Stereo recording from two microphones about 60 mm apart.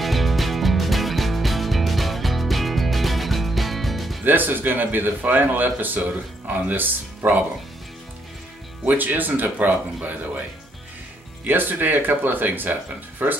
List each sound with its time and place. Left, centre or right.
0.0 s music: centre
4.2 s speech: right
8.8 s speech: right
11.4 s speech: right